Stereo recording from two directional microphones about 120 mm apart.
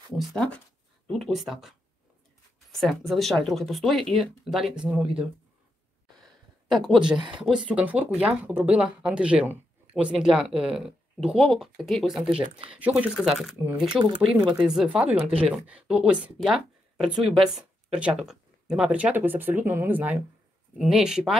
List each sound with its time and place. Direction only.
0.1 s speech: 5° left (ahead or behind)
2.8 s speech: centre (ahead or behind)
6.2 s a sound: centre (ahead or behind)
7.2 s speech: 40° right (ahead or behind)
7.4 s speech: 5° right (ahead or behind)
13.7 s speech: 45° right (ahead or behind)
14.5 s speech: 5° right (ahead or behind)